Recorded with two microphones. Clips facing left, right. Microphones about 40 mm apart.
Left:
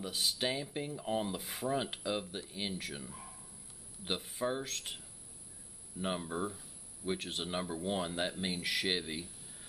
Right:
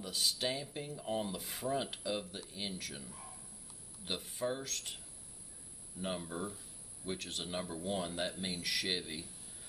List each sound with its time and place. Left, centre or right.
0.0 s speech: centre